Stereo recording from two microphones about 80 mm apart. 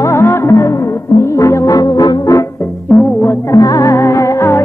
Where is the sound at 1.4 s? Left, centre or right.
Left.